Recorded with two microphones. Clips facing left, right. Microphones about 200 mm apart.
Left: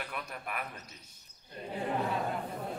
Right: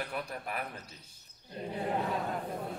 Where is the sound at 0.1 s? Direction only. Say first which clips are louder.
Right 3 dB; 30° right (ahead or behind).